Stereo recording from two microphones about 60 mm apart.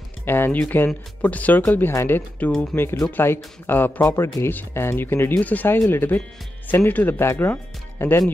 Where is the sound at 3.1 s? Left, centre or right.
Left.